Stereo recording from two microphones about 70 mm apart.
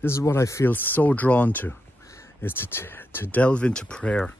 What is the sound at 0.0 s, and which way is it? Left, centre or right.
Speech, left.